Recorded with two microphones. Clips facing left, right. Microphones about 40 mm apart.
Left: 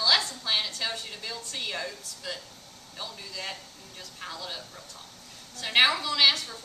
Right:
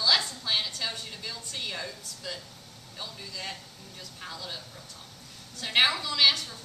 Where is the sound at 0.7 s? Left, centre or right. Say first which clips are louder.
Left 2 dB; centre.